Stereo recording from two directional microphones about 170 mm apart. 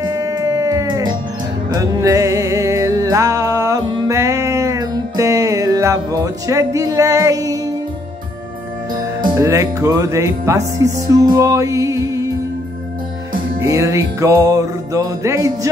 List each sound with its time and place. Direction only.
0.0 s music: 20° right (ahead or behind)
9.2 s music: 20° right (ahead or behind)
13.6 s music: 15° right (ahead or behind)